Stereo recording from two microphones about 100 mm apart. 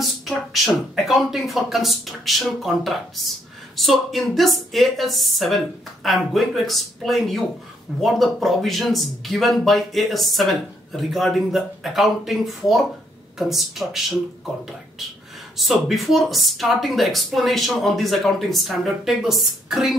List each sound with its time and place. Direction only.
0.0 s speech: centre (ahead or behind)
15.5 s speech: centre (ahead or behind)